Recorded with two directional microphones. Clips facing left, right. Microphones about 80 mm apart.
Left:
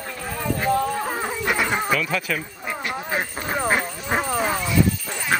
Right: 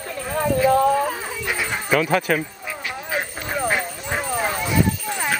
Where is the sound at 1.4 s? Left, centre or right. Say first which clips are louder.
Left 3 dB; left.